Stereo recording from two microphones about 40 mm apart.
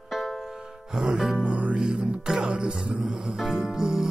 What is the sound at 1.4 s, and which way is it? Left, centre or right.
Music, right.